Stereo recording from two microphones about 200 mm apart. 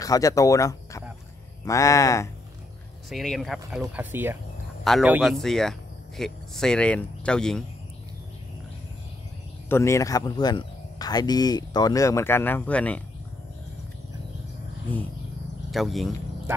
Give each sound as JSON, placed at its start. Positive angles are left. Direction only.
{"t": 0.0, "sound": "speech", "side_deg": 15}
{"t": 3.1, "sound": "speech", "side_deg": 0}
{"t": 9.7, "sound": "speech", "side_deg": 15}
{"t": 15.7, "sound": "speech", "side_deg": 0}